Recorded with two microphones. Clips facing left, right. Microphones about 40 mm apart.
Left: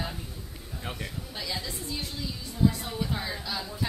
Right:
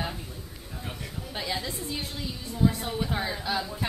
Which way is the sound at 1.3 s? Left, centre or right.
Right.